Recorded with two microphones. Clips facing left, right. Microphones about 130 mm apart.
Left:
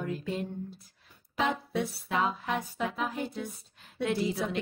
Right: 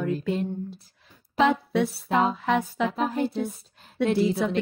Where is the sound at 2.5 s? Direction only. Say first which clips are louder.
Right 8 dB; 80° right.